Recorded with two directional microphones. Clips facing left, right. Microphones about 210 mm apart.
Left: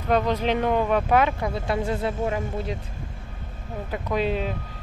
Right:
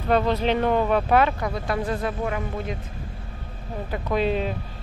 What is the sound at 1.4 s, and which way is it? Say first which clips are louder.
Speech: even; 25° left (ahead or behind).